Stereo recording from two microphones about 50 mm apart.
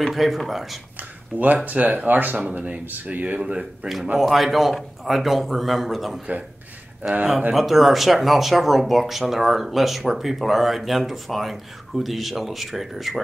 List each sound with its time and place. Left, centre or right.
0.0 s speech: centre
1.3 s speech: right
3.3 s speech: centre
4.2 s speech: centre
7.0 s speech: right
7.5 s speech: centre